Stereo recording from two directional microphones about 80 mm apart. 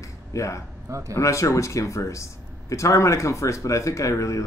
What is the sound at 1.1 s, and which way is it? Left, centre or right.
Speech, left.